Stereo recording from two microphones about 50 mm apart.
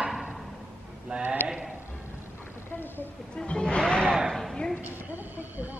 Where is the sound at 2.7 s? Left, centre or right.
Left.